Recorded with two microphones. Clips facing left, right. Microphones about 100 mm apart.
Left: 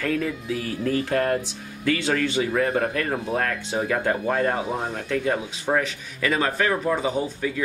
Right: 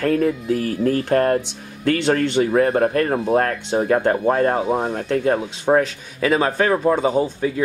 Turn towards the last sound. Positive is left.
turn(degrees=-30)  # may be behind; listen again after turning